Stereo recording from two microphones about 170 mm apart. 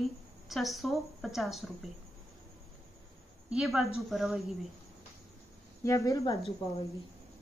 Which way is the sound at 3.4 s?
5° right (ahead or behind).